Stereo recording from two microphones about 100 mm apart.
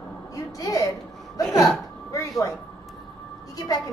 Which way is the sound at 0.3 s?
35° left (ahead or behind).